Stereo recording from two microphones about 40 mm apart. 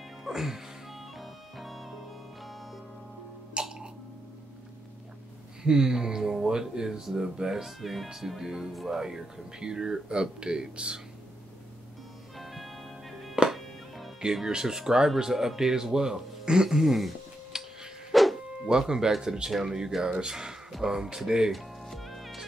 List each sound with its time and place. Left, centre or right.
0.3 s music: centre
1.1 s music: centre
3.6 s throat clearing: centre
5.6 s speech: centre
7.6 s speech: centre; by 11.0 s right
12.4 s music: centre
14.2 s speech: centre
18.1 s music: centre
18.7 s speech: centre
21.5 s music: centre